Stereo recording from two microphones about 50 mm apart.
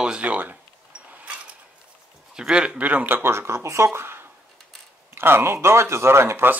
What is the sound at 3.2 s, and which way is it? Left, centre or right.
Speech, right.